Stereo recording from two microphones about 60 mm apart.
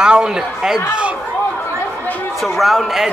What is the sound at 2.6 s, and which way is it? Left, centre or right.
Speech, centre.